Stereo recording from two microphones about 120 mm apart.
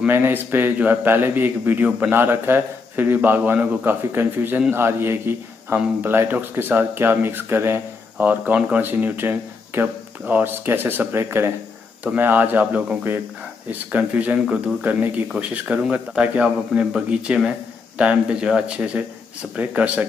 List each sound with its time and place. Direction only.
0.0 s a man's voice: 15° right (ahead or behind)